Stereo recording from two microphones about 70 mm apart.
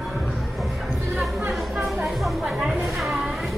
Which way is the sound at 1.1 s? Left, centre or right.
Centre.